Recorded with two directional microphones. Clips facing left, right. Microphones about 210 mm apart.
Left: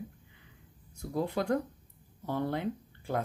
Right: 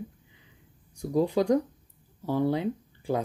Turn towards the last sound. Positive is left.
turn(degrees=-15)  # may be behind; listen again after turning